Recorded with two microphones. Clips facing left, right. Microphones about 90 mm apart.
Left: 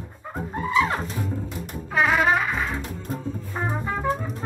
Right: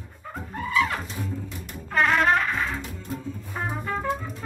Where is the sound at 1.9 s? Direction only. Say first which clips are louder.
Left 1 dB; 5° left (ahead or behind).